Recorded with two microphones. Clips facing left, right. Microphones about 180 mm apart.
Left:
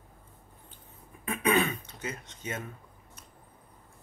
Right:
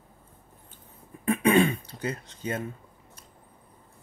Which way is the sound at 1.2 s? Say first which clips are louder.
Right 6 dB; 30° right (ahead or behind).